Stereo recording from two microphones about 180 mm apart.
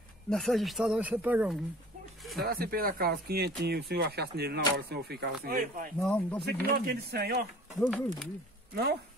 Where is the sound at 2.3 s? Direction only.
55° right (ahead or behind).